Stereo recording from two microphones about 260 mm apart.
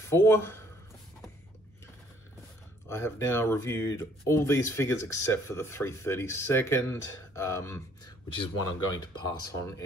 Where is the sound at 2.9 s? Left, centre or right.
Centre.